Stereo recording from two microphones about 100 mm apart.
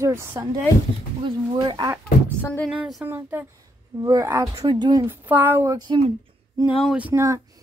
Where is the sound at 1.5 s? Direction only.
45° right (ahead or behind).